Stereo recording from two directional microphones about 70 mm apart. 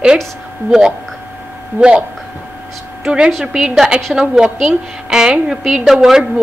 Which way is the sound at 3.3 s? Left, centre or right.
Centre.